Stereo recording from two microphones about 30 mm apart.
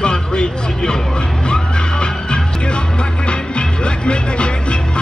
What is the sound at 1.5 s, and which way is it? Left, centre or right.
Music, left.